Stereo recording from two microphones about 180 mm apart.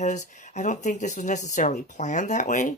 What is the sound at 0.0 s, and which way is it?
A woman's voice, 40° left (ahead or behind).